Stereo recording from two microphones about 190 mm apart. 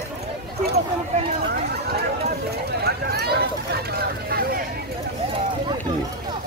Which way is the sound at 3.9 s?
55° right (ahead or behind).